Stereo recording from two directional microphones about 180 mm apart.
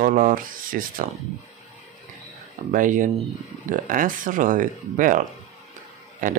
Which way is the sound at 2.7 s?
45° right (ahead or behind).